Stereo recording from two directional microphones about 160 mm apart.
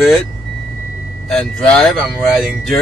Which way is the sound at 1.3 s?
5° left (ahead or behind).